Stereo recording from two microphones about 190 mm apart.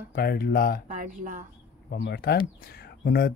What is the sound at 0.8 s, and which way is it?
Speech, 45° right (ahead or behind).